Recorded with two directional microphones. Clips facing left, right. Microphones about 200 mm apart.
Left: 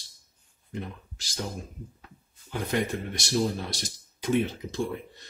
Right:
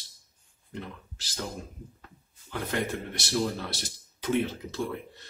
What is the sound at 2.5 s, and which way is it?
Speech, 15° left (ahead or behind).